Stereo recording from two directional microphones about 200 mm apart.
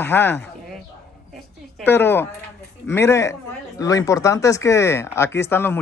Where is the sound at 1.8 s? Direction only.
10° left (ahead or behind).